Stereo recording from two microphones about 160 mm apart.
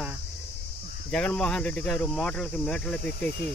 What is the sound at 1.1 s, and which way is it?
Speech, 5° left (ahead or behind).